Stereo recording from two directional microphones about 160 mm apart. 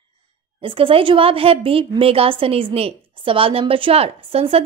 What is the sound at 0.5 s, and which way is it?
A woman's voice, 35° right (ahead or behind).